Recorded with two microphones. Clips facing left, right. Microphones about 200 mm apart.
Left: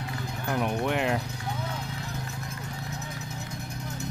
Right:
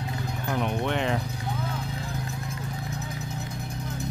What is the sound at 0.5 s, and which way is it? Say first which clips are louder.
Speech: even; 5° left (ahead or behind).